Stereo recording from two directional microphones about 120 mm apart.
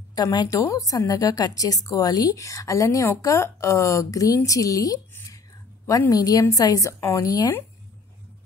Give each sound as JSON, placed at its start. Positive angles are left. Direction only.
{"t": 0.1, "sound": "a woman's voice", "side_deg": 35}
{"t": 5.1, "sound": "whispering", "side_deg": 25}
{"t": 5.9, "sound": "a woman's voice", "side_deg": 30}